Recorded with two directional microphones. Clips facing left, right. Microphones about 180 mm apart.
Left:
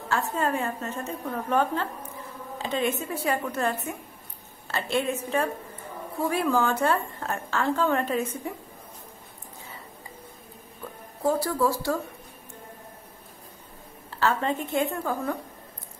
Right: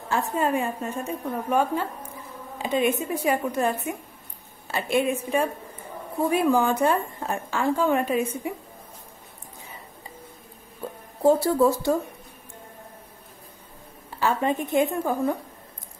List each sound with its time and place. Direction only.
0.1 s speech: 15° right (ahead or behind)
10.8 s music: 25° right (ahead or behind)
11.2 s a woman's voice: 25° right (ahead or behind)
14.1 s speech: 15° right (ahead or behind)